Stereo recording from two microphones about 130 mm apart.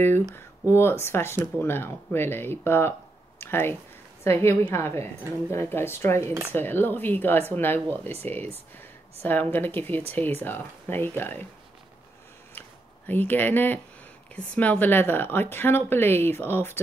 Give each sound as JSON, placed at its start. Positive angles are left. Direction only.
{"t": 0.7, "sound": "speech", "side_deg": 20}
{"t": 3.3, "sound": "a sound", "side_deg": 20}
{"t": 4.2, "sound": "a woman's voice", "side_deg": 20}
{"t": 9.2, "sound": "speech", "side_deg": 15}
{"t": 12.5, "sound": "a sound", "side_deg": 15}
{"t": 14.3, "sound": "speech", "side_deg": 10}